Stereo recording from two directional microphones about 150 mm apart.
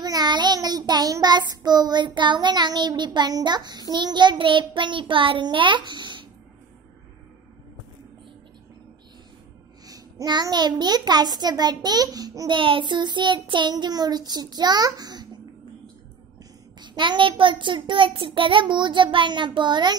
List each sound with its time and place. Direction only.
0.0 s a child's voice: 25° right (ahead or behind)
9.8 s a child's voice: 25° right (ahead or behind)
16.8 s a child's voice: 30° right (ahead or behind)